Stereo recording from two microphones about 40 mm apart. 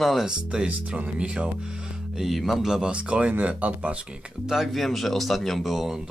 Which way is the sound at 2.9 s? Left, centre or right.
Right.